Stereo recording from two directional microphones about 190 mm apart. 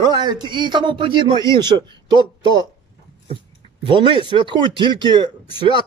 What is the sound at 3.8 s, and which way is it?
Speech, 25° right (ahead or behind).